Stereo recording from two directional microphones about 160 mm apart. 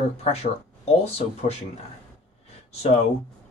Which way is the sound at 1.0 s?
40° left (ahead or behind).